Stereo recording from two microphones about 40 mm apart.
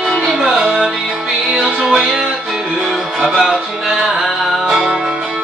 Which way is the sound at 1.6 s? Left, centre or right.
Centre.